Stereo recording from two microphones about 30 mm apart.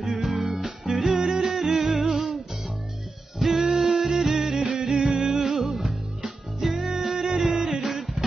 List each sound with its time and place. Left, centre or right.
0.2 s music: centre; by 1.5 s right
1.5 s music: centre
3.6 s music: centre